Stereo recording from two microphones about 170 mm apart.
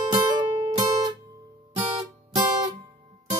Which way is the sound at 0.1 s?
25° right (ahead or behind).